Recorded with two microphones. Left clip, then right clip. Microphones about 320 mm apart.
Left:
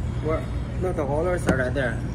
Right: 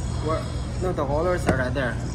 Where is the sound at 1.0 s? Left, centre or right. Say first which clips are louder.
Right 1 dB; right.